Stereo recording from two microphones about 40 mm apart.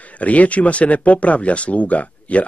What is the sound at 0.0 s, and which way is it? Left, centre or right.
Speech, left.